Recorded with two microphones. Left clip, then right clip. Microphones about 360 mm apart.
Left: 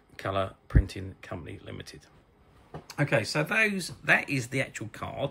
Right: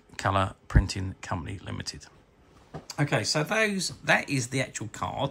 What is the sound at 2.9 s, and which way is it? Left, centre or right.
Speech, centre.